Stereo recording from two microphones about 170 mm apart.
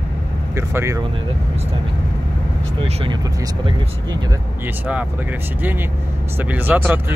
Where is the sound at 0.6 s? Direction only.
15° right (ahead or behind).